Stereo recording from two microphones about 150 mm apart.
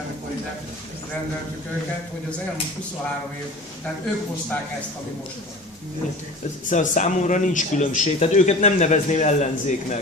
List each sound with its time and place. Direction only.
6.7 s speech: 55° left (ahead or behind)